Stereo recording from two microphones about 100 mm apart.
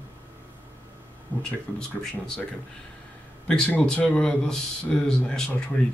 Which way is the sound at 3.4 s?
10° left (ahead or behind).